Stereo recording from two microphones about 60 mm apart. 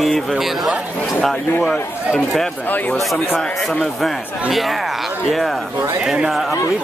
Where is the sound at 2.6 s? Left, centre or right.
Left.